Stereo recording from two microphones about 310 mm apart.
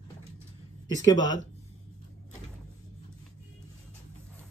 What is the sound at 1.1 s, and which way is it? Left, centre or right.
Speech, centre.